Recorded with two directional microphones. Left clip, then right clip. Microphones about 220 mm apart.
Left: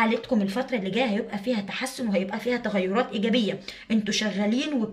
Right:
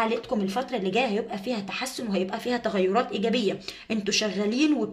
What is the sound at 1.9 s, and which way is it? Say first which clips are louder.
A woman's voice: left 3 dB; 30° right (ahead or behind).